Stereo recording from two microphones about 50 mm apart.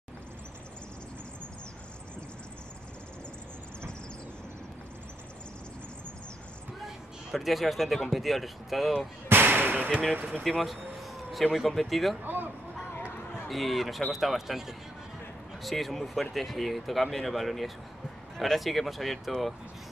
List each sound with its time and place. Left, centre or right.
7.3 s speech: centre
9.3 s a sound: right
10.1 s speech: right
10.6 s a sound: centre
11.6 s speech: centre
13.5 s speech: centre